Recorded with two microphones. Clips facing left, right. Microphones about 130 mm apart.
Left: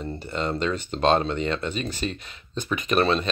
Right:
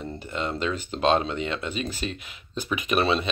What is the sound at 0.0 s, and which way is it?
Speech, 5° right (ahead or behind).